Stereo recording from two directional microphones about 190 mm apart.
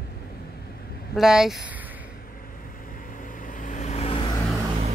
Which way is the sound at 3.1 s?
45° left (ahead or behind).